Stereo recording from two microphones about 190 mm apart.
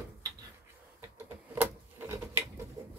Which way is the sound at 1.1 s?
10° right (ahead or behind).